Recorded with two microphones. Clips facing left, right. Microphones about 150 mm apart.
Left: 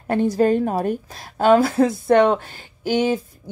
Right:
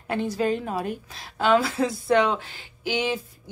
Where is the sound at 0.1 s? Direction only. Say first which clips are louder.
Left 7 dB; 45° left (ahead or behind).